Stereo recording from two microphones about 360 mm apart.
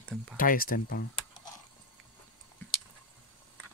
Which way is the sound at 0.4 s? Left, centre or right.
Left.